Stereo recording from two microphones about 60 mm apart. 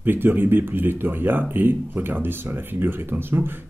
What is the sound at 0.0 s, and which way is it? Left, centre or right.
Speech, right.